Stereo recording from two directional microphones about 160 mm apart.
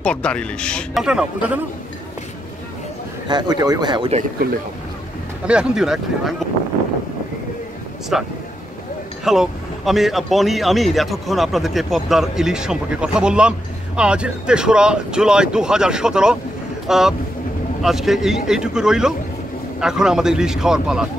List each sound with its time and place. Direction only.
0.0 s speech: 5° left (ahead or behind)
3.3 s speech: 25° right (ahead or behind)
5.5 s speech: 5° right (ahead or behind)
8.1 s speech: centre (ahead or behind)